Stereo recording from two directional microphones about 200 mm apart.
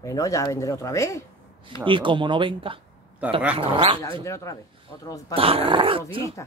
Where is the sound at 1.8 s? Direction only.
25° right (ahead or behind).